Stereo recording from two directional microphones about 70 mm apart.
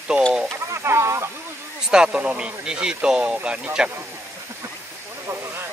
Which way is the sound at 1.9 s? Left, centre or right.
Centre.